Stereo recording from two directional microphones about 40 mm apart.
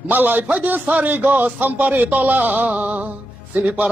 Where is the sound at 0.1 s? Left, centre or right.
Right.